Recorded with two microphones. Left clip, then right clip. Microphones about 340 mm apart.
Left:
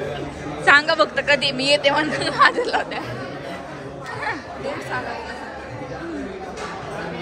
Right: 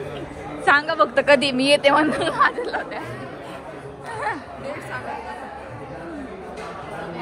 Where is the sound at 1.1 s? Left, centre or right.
Centre.